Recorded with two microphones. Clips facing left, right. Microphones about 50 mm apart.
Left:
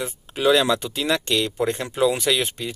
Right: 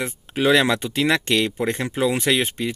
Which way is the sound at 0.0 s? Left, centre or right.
Right.